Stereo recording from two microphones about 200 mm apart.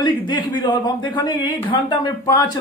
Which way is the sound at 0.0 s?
20° left (ahead or behind).